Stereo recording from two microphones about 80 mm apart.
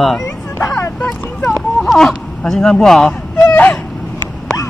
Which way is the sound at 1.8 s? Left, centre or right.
Centre.